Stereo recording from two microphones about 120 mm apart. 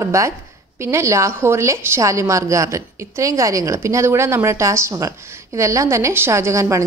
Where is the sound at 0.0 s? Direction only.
25° right (ahead or behind).